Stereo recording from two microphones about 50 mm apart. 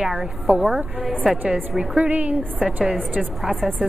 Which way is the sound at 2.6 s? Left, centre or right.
Centre.